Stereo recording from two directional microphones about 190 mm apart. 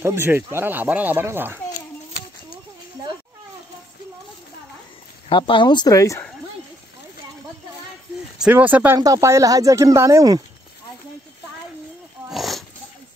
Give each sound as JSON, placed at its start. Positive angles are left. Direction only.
{"t": 0.0, "sound": "speech", "side_deg": -10}
{"t": 5.3, "sound": "speech", "side_deg": 25}
{"t": 8.4, "sound": "speech", "side_deg": -10}
{"t": 12.3, "sound": "a sound", "side_deg": 0}